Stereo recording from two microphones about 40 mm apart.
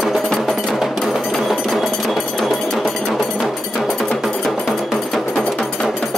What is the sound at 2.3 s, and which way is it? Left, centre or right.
Music, centre.